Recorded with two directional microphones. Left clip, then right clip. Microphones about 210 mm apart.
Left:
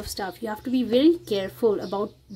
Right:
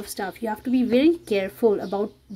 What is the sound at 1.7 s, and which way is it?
Speech, 15° right (ahead or behind).